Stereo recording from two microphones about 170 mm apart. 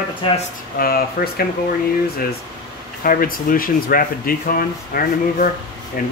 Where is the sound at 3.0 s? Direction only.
55° left (ahead or behind).